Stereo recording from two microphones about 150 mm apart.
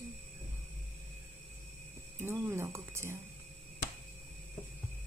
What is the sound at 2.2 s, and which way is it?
A woman's voice, 15° right (ahead or behind).